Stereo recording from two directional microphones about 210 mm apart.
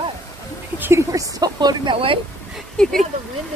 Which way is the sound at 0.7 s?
10° right (ahead or behind).